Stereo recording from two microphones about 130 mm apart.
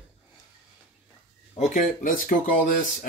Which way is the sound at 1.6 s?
75° left (ahead or behind).